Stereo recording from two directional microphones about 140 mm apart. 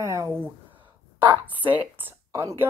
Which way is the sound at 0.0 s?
20° right (ahead or behind).